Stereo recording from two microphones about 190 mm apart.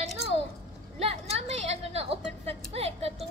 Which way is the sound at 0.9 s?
30° right (ahead or behind).